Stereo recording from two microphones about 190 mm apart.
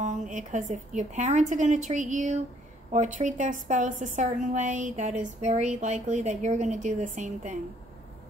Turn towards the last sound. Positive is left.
turn(degrees=-40)  # may be behind; listen again after turning